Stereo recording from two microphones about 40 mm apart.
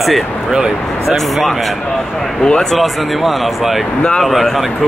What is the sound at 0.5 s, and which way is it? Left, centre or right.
Speech, centre.